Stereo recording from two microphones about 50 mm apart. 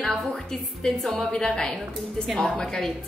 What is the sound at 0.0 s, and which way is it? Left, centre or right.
A woman's voice, centre.